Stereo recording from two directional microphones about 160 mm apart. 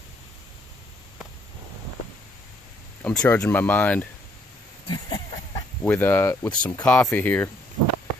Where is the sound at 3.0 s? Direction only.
10° left (ahead or behind).